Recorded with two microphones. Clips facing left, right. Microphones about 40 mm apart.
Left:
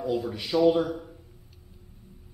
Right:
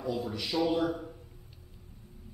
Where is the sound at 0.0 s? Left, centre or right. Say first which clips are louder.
Left 4 dB; centre.